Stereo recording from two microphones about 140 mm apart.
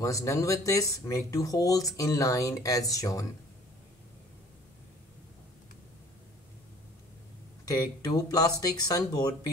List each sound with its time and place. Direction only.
0.0 s speech: 25° left (ahead or behind)
7.6 s speech: 25° left (ahead or behind)